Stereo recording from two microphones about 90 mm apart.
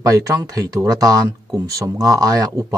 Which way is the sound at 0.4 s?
40° right (ahead or behind).